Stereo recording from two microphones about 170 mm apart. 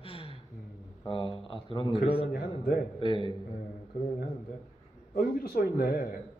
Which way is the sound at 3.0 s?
30° left (ahead or behind).